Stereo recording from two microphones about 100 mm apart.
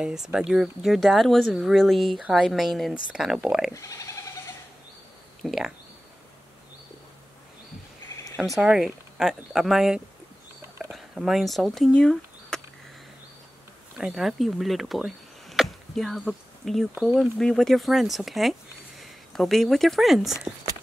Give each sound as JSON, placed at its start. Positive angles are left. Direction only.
{"t": 0.0, "sound": "speech", "side_deg": -5}
{"t": 3.7, "sound": "speech", "side_deg": 35}
{"t": 5.4, "sound": "speech", "side_deg": 0}
{"t": 8.5, "sound": "speech", "side_deg": -5}
{"t": 11.9, "sound": "a sound", "side_deg": 10}
{"t": 13.9, "sound": "speech", "side_deg": -5}
{"t": 16.9, "sound": "speech", "side_deg": -10}
{"t": 17.4, "sound": "speech", "side_deg": 5}